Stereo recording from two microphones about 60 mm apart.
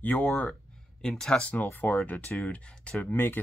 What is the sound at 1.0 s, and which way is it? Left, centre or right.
Speech, centre.